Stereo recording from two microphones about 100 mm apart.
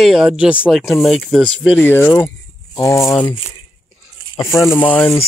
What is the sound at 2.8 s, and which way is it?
Speech, 30° left (ahead or behind).